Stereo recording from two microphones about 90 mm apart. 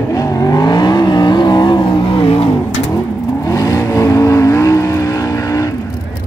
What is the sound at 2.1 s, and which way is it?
Vehicle, 90° left.